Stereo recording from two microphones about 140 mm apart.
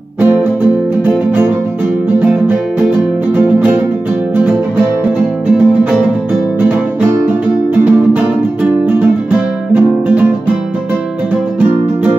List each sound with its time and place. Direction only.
1.0 s music: 15° right (ahead or behind)
7.8 s music: 10° right (ahead or behind)